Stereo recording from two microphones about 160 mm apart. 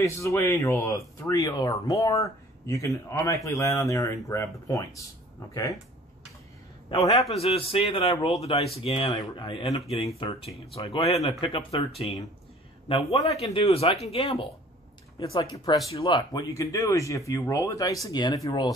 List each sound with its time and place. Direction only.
0.0 s speech: 20° left (ahead or behind)
6.9 s speech: 25° left (ahead or behind)
7.2 s a man's voice: 40° left (ahead or behind)
8.4 s a man's voice: 40° left (ahead or behind)
9.1 s a man's voice: 25° left (ahead or behind)
12.8 s a man's voice: 35° left (ahead or behind)